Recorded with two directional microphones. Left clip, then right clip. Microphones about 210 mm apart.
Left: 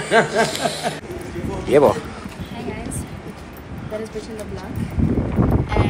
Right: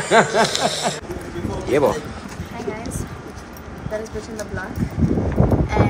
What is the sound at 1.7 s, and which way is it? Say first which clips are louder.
Speech: left 4 dB; centre (ahead or behind).